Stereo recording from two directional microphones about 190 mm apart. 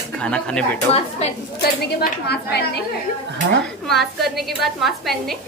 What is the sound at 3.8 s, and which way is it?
A woman's voice, centre (ahead or behind).